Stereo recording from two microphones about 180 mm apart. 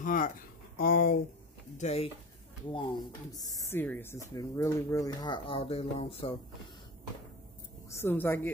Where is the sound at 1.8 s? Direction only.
35° left (ahead or behind).